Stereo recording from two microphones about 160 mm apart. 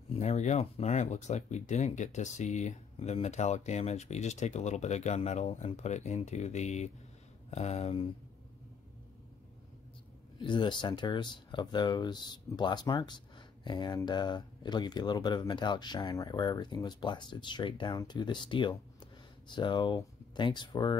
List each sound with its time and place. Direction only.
0.1 s speech: 45° left (ahead or behind)
10.4 s speech: 30° left (ahead or behind)